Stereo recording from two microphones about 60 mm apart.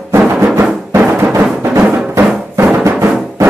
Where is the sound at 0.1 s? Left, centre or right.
Right.